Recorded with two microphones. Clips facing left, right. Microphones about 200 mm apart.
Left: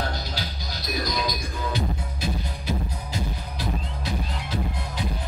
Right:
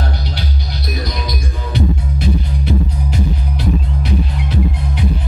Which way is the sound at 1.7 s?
65° right (ahead or behind).